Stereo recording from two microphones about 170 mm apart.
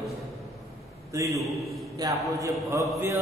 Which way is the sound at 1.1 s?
20° right (ahead or behind).